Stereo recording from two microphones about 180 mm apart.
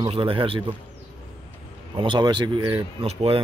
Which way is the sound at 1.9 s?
25° right (ahead or behind).